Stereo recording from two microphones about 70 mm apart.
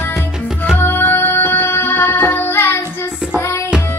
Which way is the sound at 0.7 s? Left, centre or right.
Left.